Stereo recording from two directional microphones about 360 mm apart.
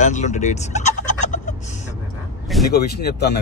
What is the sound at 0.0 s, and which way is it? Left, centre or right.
Fowl, centre.